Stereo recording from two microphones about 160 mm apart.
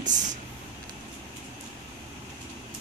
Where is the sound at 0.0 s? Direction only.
50° right (ahead or behind).